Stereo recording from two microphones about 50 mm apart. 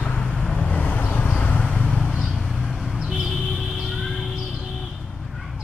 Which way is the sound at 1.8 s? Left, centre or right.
Centre.